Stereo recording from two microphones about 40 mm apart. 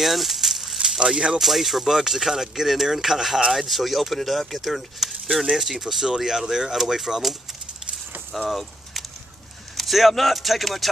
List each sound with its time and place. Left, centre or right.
0.0 s a sound: centre
0.8 s speech: centre
1.4 s speech: centre
8.5 s keys jangling: centre
9.8 s speech: centre